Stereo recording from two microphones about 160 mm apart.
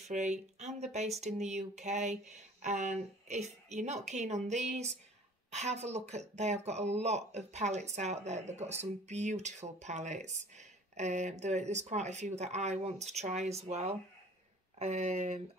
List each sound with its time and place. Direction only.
0.1 s speech: 45° right (ahead or behind)